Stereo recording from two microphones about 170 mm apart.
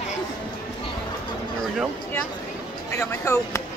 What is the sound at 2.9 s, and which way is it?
Speech, 15° left (ahead or behind).